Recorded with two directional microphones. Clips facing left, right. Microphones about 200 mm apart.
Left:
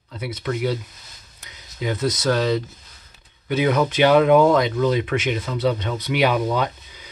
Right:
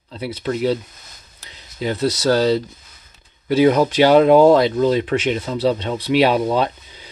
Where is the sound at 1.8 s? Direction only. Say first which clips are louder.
Right 3 dB; 30° right (ahead or behind).